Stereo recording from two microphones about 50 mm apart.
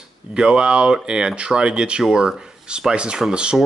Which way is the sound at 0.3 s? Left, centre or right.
Centre.